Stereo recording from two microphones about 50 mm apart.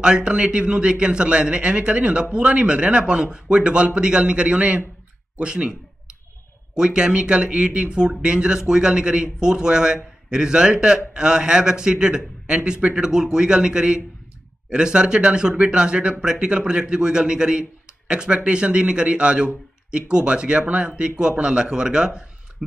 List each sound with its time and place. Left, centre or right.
0.0 s speech: centre